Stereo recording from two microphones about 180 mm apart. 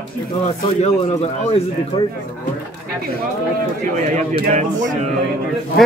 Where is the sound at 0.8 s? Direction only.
35° left (ahead or behind).